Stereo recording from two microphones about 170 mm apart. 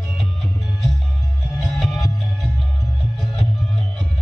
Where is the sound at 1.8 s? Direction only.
Centre (ahead or behind).